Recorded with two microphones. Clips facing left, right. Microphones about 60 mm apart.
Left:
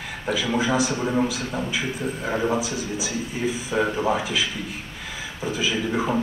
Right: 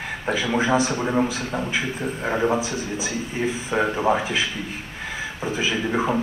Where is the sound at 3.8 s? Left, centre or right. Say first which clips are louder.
Right 2 dB; centre.